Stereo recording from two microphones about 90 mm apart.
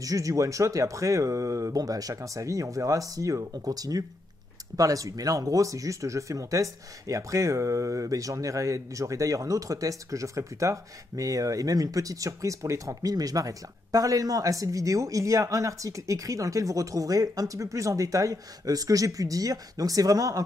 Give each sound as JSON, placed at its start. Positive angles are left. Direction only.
{"t": 0.0, "sound": "speech", "side_deg": -40}